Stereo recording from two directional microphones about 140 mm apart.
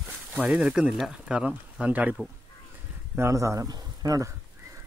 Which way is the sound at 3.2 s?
20° right (ahead or behind).